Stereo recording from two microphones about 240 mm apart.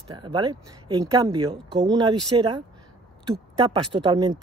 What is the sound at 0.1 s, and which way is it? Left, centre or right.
A woman's voice, centre.